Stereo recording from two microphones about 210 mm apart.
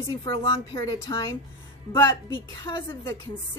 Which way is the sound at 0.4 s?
25° left (ahead or behind).